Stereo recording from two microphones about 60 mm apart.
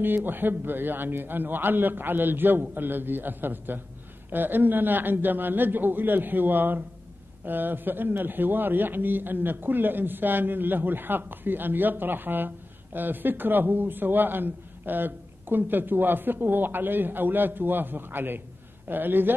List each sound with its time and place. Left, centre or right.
0.0 s a man's voice: right